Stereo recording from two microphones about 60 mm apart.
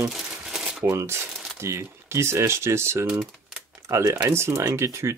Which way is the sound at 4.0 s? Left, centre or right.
Right.